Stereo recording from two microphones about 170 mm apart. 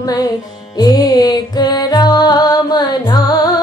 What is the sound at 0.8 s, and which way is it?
Music, 20° left (ahead or behind).